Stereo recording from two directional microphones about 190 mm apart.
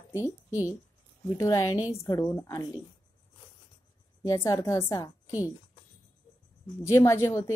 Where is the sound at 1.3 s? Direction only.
15° left (ahead or behind).